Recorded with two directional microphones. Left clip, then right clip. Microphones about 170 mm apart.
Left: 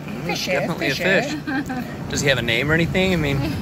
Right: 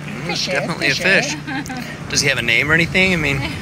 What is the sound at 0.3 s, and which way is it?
Speech, centre (ahead or behind).